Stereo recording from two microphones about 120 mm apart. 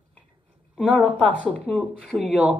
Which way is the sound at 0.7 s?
10° left (ahead or behind).